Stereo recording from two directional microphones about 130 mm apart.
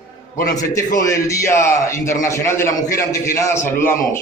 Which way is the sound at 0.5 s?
25° left (ahead or behind).